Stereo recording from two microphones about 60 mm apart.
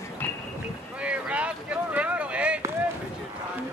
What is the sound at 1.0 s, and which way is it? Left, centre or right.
Boat, right.